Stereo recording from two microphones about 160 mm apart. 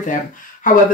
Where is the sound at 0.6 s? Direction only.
55° left (ahead or behind).